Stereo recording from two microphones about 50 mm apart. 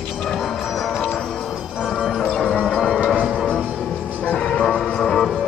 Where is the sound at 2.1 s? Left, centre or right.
Centre.